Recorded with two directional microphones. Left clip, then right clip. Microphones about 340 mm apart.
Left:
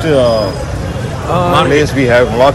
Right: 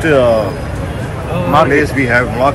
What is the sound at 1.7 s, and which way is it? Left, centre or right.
Speech, left.